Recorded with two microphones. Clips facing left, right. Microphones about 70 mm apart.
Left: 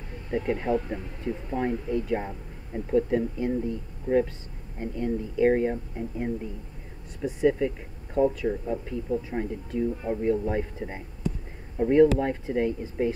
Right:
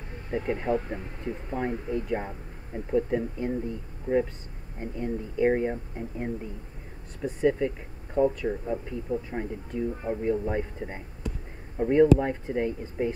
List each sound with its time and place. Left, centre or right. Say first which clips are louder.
0.3 s speech: left 1 dB; centre
2.1 s speech: left 2 dB; centre